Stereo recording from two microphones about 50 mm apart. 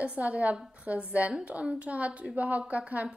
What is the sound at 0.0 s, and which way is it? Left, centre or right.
A woman's voice, right.